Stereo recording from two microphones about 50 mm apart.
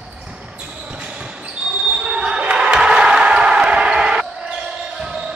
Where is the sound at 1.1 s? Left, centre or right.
Centre.